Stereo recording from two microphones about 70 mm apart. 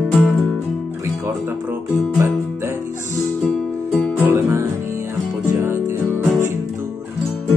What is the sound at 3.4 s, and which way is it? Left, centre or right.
Music, centre.